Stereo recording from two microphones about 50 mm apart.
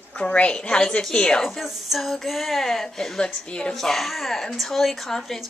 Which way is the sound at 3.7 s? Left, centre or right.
Centre.